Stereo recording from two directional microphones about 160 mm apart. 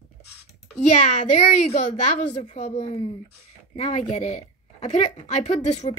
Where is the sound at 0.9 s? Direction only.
50° left (ahead or behind).